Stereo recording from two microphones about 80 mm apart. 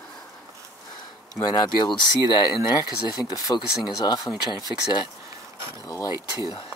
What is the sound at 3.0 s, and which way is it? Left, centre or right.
Speech, left.